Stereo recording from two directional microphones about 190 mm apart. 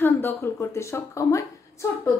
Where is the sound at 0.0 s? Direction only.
10° left (ahead or behind).